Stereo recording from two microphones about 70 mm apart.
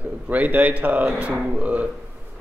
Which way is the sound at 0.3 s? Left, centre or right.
Right.